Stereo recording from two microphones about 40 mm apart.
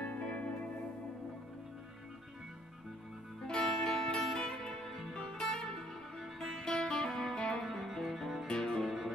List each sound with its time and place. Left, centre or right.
0.0 s music: left
3.4 s music: centre
7.6 s music: centre
8.5 s music: centre